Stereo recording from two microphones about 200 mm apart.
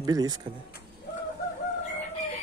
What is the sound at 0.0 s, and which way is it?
Speech, 20° right (ahead or behind).